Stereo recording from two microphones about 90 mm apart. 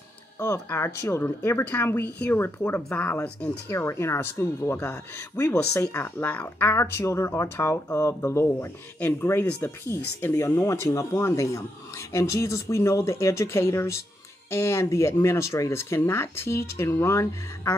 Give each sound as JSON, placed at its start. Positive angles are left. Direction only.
{"t": 0.7, "sound": "speech", "side_deg": 30}
{"t": 5.9, "sound": "speech", "side_deg": 20}
{"t": 6.7, "sound": "speech", "side_deg": 30}